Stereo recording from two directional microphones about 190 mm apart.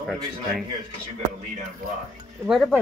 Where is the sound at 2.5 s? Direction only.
Centre (ahead or behind).